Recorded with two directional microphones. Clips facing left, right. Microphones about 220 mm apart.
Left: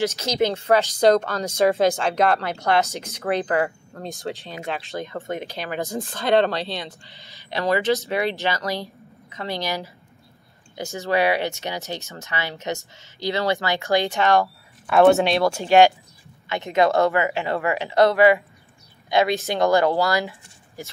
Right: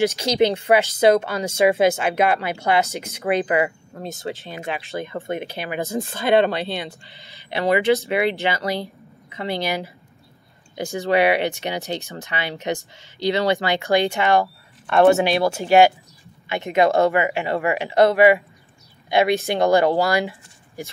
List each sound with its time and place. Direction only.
0.0 s speech: 15° right (ahead or behind)
10.8 s speech: 15° right (ahead or behind)
14.9 s speech: centre (ahead or behind); by 20.9 s 15° right (ahead or behind)